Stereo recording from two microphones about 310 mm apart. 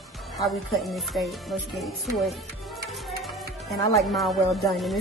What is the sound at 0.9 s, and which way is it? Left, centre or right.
Speech, centre.